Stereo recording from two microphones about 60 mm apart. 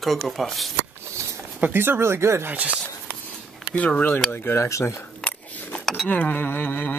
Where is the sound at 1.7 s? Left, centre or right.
Right.